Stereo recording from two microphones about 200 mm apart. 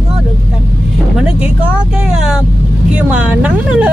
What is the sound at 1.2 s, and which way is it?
Vehicle, 5° right (ahead or behind).